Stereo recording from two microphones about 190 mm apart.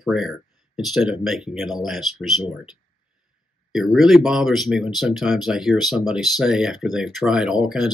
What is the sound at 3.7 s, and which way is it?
Speech, centre (ahead or behind).